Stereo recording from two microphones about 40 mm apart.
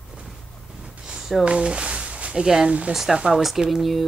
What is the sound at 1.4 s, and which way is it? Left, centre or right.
Speech, right.